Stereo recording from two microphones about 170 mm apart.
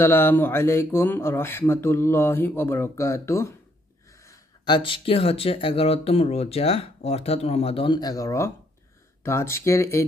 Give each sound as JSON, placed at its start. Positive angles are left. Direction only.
{"t": 0.0, "sound": "speech", "side_deg": 15}